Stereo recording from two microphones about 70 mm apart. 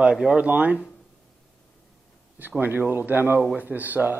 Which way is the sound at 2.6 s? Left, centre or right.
Right.